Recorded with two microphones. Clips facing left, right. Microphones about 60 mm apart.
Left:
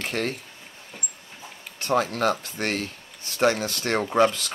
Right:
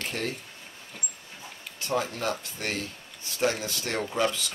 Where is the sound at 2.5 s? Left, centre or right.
Left.